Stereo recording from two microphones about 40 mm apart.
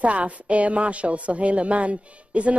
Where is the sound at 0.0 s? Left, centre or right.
Right.